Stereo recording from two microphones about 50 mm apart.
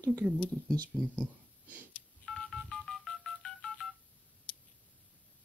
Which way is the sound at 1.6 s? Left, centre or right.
Right.